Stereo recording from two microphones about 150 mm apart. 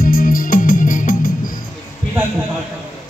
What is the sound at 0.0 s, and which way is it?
Music, 70° left (ahead or behind).